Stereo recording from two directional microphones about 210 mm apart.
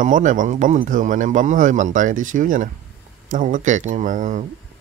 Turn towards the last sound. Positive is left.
turn(degrees=-35)  # may be behind; listen again after turning